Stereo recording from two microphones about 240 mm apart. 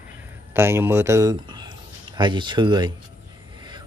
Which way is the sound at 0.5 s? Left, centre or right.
Centre.